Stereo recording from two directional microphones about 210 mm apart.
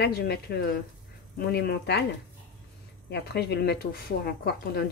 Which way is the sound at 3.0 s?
50° left (ahead or behind).